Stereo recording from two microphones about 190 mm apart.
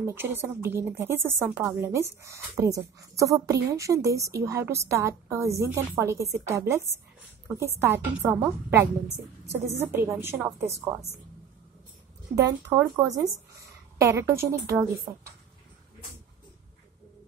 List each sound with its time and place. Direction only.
0.0 s speech: 10° right (ahead or behind)
9.8 s speech: 15° right (ahead or behind)
12.4 s speech: 15° right (ahead or behind)